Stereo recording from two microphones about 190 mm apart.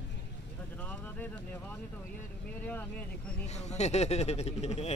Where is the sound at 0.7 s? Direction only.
10° left (ahead or behind).